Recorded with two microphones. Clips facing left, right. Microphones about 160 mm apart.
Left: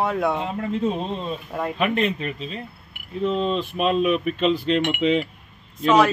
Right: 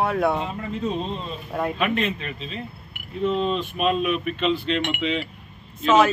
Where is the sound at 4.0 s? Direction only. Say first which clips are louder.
Left 3 dB; 40° left (ahead or behind).